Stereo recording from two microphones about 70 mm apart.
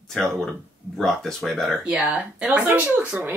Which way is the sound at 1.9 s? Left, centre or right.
Centre.